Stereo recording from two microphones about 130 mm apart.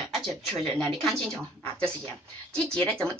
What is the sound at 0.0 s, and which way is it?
Speech, centre (ahead or behind).